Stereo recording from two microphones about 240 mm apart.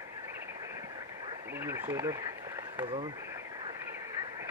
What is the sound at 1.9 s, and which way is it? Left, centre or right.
Speech, centre.